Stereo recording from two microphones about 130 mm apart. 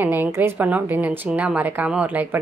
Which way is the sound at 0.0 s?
15° right (ahead or behind).